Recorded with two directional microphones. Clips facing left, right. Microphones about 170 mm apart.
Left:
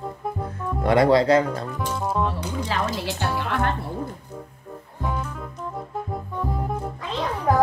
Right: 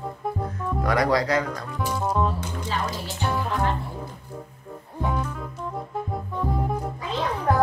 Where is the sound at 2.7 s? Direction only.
80° left.